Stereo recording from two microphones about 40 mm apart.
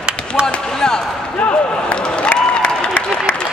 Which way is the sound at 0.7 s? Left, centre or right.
Centre.